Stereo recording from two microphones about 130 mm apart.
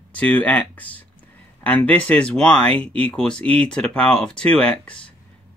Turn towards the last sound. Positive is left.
turn(degrees=10)  # may be behind; listen again after turning